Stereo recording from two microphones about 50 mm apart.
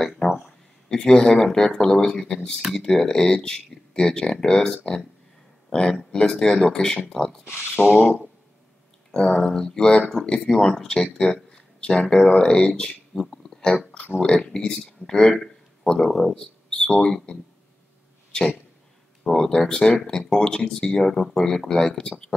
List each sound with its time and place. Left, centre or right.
0.8 s speech: centre
7.8 s a sound: left
9.1 s speech: centre
13.1 s a sound: centre
13.7 s speech: left
14.2 s speech: centre
19.2 s speech: centre